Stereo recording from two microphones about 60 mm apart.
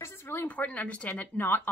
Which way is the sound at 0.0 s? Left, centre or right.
Left.